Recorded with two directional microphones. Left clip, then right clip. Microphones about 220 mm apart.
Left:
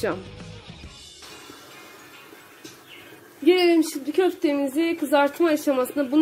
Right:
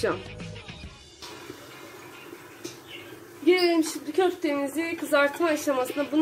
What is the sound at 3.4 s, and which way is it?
Speech, 40° left (ahead or behind).